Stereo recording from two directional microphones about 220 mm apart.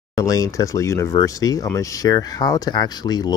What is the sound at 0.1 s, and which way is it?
Speech, 15° left (ahead or behind).